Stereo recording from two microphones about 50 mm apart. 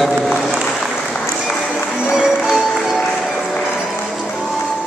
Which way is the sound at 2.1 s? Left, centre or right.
Centre.